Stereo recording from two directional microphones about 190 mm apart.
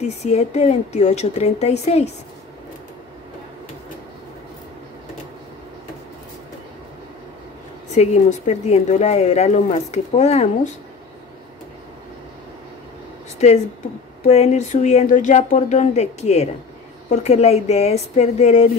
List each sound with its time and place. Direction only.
0.0 s speech: 35° left (ahead or behind)
7.9 s speech: 35° left (ahead or behind)
14.2 s speech: 35° left (ahead or behind)